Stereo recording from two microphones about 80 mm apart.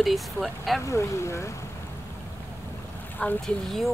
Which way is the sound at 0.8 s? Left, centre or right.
Left.